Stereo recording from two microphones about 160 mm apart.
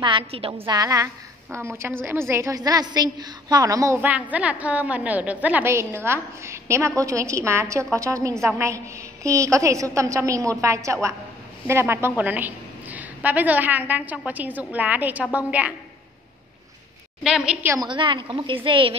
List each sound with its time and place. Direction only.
0.0 s a woman's voice: 35° right (ahead or behind)
0.7 s a woman's voice: 20° right (ahead or behind)
17.2 s a woman's voice: 5° right (ahead or behind)
17.7 s a woman's voice: 30° right (ahead or behind)